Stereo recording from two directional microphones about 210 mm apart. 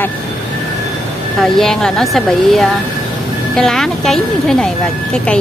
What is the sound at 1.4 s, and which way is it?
Speech, centre (ahead or behind).